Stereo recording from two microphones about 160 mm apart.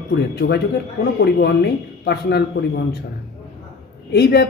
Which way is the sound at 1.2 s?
90° left.